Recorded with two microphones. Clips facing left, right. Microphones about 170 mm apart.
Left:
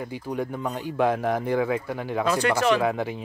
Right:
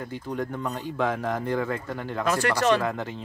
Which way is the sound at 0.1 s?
10° left (ahead or behind).